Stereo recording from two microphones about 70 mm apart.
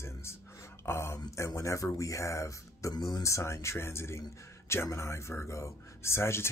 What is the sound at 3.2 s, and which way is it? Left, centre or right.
Speech, left.